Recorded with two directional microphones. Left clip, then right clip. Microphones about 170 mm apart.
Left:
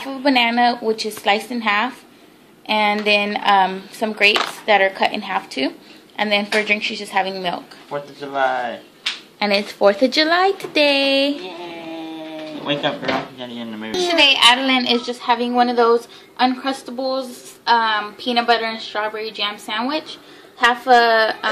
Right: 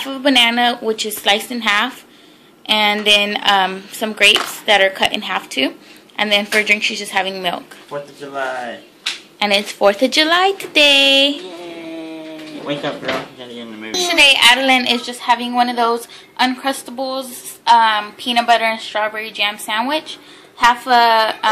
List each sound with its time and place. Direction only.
0.0 s a woman's voice: 10° right (ahead or behind)
7.9 s speech: 15° left (ahead or behind)
9.4 s speech: 5° left (ahead or behind)
13.4 s speech: 30° left (ahead or behind)
13.9 s a woman's voice: centre (ahead or behind)